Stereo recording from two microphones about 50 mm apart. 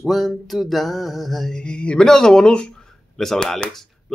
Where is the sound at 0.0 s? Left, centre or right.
Centre.